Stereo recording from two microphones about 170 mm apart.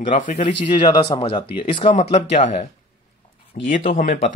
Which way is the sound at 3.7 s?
50° left (ahead or behind).